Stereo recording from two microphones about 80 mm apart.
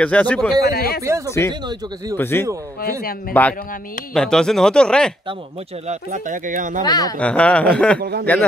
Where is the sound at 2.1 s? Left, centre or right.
Left.